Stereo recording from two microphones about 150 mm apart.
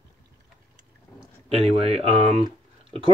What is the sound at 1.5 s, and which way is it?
Speech, 40° right (ahead or behind).